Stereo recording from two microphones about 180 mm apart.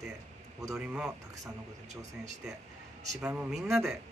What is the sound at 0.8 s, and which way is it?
Speech, 5° right (ahead or behind).